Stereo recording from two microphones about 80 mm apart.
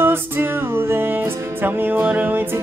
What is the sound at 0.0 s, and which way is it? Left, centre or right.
Music, right.